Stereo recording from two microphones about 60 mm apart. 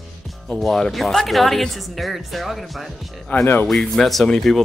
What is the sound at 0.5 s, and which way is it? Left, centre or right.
Speech, centre.